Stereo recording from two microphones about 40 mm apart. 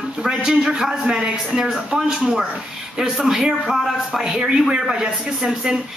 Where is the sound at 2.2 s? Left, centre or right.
Right.